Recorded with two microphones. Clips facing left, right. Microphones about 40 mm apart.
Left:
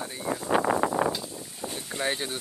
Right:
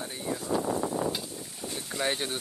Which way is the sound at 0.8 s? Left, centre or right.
Left.